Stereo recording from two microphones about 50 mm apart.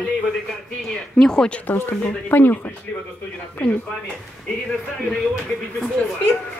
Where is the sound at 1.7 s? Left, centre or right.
Left.